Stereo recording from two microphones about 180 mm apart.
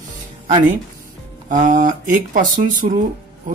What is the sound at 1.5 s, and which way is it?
Speech, 45° right (ahead or behind).